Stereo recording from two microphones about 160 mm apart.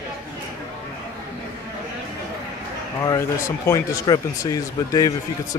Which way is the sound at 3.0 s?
20° left (ahead or behind).